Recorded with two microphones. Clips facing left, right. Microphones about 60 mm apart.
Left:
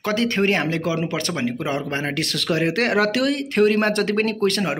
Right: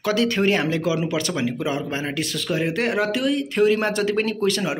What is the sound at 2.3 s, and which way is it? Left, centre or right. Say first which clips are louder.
Speech: left 3 dB; left.